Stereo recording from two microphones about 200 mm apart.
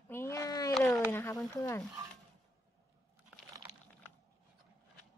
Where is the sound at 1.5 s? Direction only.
15° left (ahead or behind).